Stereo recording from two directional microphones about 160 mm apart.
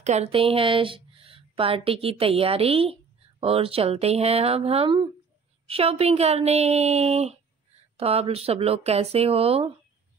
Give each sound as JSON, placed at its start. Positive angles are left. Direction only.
{"t": 0.0, "sound": "speech", "side_deg": -45}